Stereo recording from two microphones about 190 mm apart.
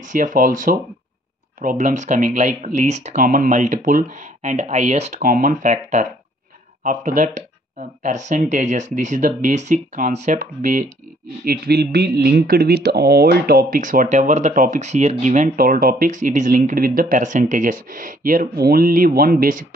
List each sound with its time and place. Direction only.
0.0 s speech: 45° right (ahead or behind)
11.4 s speech: 55° right (ahead or behind)